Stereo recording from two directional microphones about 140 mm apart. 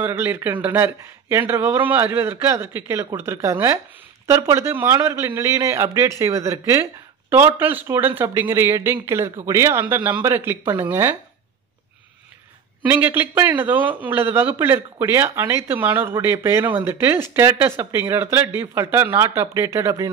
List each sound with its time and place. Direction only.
0.0 s a man's voice: 15° right (ahead or behind)
12.8 s a man's voice: 15° right (ahead or behind)